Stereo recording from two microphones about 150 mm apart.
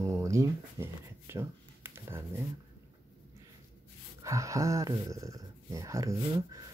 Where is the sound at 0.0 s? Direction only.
20° right (ahead or behind).